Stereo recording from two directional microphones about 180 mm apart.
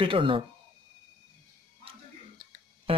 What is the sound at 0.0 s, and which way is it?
Speech, 30° right (ahead or behind).